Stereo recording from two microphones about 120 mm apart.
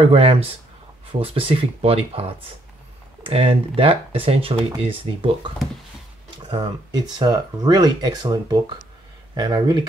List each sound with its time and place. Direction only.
0.0 s speech: 50° right (ahead or behind)
6.5 s speech: 40° right (ahead or behind)